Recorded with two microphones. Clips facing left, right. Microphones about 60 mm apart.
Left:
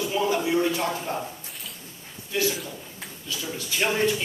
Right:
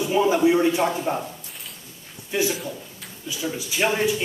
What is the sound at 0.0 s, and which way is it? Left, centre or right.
A man's voice, centre.